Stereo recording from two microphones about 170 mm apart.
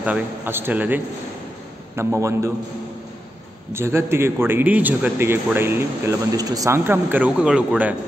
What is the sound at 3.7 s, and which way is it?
Speech, 15° right (ahead or behind).